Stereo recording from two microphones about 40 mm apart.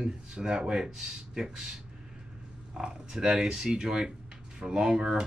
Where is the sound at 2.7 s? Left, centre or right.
Centre.